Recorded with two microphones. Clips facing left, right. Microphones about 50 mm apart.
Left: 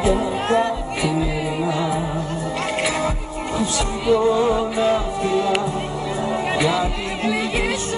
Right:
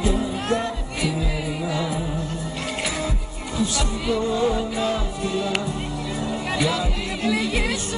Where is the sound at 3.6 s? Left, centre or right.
Left.